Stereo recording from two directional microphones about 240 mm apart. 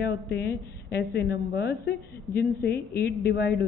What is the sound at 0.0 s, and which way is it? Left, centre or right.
A woman's voice, left.